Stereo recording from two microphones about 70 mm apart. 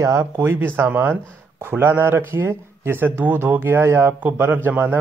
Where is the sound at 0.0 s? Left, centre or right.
Right.